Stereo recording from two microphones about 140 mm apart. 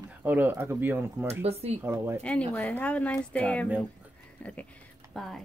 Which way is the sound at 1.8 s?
15° right (ahead or behind).